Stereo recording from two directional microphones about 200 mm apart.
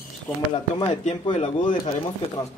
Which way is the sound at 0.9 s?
35° left (ahead or behind).